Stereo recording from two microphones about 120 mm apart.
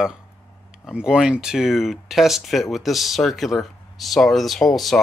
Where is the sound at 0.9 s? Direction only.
5° right (ahead or behind).